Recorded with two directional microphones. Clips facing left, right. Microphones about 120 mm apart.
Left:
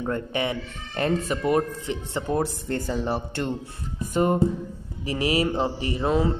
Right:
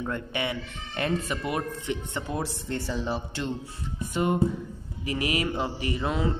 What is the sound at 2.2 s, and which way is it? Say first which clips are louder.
Speech: left 8 dB; 45° left (ahead or behind).